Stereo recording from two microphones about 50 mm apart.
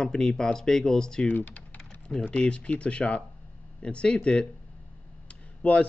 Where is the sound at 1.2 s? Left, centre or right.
Left.